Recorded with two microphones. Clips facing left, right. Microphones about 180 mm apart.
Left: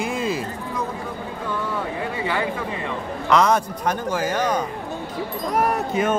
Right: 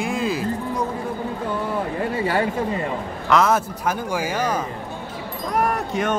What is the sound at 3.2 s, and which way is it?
Speech, centre (ahead or behind).